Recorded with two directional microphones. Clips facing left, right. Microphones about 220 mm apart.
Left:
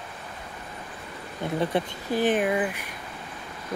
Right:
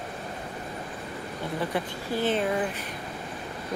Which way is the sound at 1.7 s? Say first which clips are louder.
Left 3 dB; 15° left (ahead or behind).